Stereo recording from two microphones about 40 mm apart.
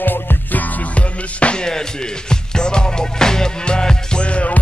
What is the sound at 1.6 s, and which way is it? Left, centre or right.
Speech, centre.